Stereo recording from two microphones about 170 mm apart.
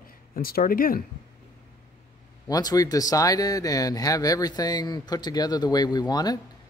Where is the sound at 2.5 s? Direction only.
20° left (ahead or behind).